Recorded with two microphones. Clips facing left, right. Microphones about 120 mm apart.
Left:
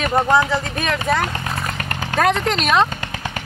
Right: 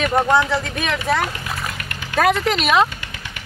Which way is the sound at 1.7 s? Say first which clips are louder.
Left 6 dB; 40° left (ahead or behind).